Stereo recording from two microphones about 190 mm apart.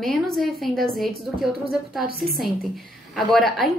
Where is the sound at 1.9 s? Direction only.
50° right (ahead or behind).